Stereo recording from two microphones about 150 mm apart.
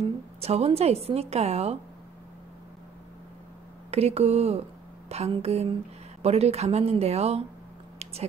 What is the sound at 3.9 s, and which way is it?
Speech, 45° right (ahead or behind).